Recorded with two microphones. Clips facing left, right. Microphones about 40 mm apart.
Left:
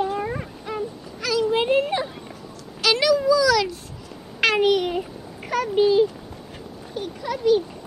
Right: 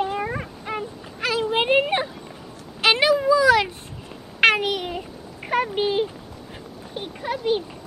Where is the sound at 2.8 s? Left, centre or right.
Right.